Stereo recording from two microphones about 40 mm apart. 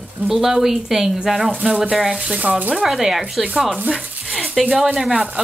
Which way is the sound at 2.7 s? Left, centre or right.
Centre.